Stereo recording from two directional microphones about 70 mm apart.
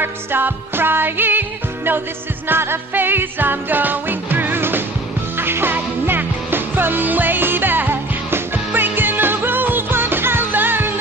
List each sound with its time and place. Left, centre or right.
0.0 s music: right
2.4 s music: right